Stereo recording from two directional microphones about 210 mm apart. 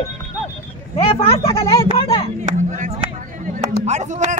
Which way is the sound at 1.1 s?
25° left (ahead or behind).